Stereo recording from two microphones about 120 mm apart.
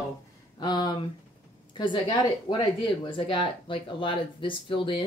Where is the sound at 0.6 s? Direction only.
40° left (ahead or behind).